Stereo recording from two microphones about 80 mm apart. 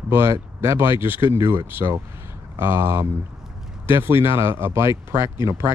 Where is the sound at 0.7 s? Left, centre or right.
Right.